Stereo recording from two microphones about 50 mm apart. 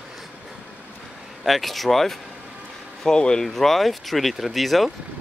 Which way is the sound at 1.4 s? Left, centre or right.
Centre.